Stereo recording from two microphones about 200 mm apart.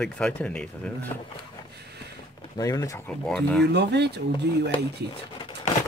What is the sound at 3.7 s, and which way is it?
Speech, 55° right (ahead or behind).